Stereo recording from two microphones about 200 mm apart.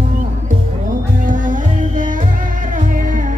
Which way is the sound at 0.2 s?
40° right (ahead or behind).